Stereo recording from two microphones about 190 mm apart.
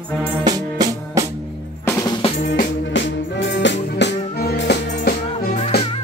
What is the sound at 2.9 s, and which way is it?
Music, 75° left (ahead or behind).